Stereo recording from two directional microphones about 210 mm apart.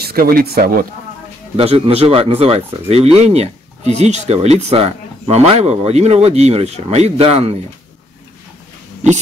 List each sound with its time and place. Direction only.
0.0 s speech: 45° right (ahead or behind)
1.6 s speech: 30° right (ahead or behind)